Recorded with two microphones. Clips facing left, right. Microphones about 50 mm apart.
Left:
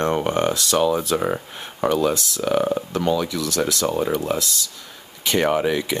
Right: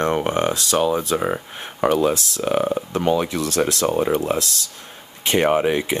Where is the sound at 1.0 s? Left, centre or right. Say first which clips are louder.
Even; centre.